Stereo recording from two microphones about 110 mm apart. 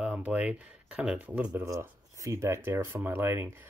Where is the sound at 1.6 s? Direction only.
30° right (ahead or behind).